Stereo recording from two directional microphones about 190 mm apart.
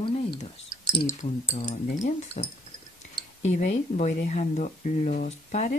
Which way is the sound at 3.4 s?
35° left (ahead or behind).